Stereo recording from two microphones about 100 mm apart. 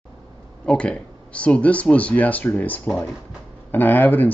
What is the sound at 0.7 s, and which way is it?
Speech, 10° left (ahead or behind).